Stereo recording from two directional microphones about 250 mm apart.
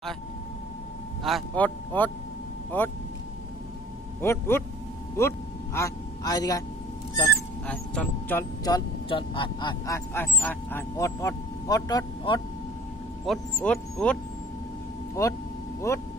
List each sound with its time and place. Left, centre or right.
1.2 s speech: centre
4.2 s speech: centre
7.2 s speech: centre
13.2 s speech: centre
15.9 s speech: centre